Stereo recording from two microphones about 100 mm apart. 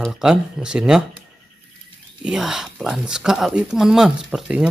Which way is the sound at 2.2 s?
5° right (ahead or behind).